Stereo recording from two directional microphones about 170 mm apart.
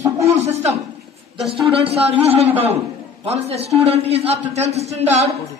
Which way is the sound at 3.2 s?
35° right (ahead or behind).